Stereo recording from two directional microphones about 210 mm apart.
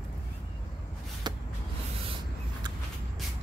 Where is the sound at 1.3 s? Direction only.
20° right (ahead or behind).